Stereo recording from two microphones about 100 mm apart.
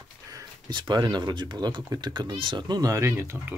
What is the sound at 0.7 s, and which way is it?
Speech, 50° right (ahead or behind).